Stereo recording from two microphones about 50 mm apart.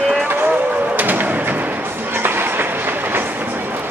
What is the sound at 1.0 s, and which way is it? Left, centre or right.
Music, right.